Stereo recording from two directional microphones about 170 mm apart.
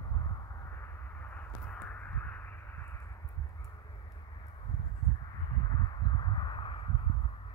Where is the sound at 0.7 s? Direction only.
15° left (ahead or behind).